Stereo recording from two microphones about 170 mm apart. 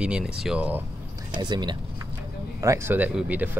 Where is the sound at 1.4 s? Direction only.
25° right (ahead or behind).